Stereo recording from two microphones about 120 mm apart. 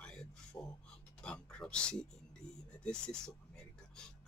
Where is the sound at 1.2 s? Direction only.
10° left (ahead or behind).